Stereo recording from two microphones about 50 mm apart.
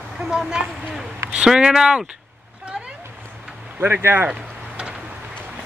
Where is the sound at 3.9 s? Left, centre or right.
Right.